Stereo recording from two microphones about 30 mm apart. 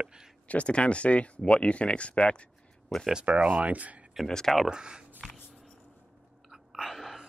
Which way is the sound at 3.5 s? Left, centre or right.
Right.